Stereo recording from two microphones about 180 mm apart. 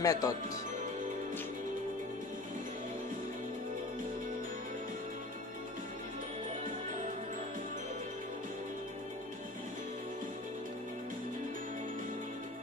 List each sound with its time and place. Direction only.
0.0 s speech: 20° left (ahead or behind)